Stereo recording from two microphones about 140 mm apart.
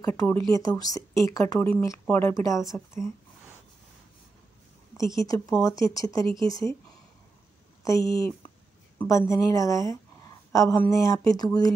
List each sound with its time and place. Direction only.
0.0 s speech: 20° left (ahead or behind)
5.0 s speech: 25° left (ahead or behind)
7.8 s speech: 25° left (ahead or behind)